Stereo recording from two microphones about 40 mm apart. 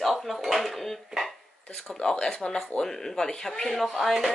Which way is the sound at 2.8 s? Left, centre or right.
Centre.